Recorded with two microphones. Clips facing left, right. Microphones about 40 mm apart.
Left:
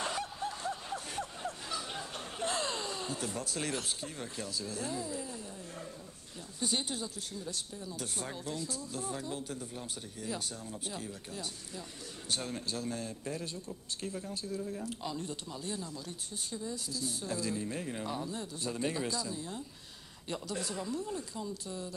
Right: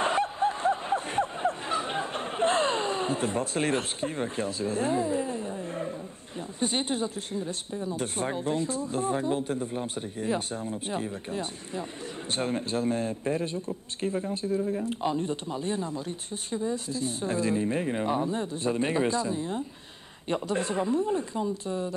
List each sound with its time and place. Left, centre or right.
0.0 s snicker: right
6.6 s speech: right